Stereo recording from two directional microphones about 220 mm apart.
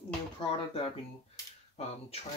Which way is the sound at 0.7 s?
25° left (ahead or behind).